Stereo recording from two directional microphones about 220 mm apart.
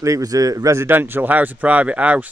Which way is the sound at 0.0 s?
15° right (ahead or behind).